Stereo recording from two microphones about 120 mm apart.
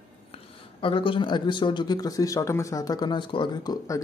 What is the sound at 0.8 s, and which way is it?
Speech, 45° left (ahead or behind).